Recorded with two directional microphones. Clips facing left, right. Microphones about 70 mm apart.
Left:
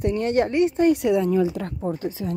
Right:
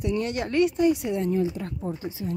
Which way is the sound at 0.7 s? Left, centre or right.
Left.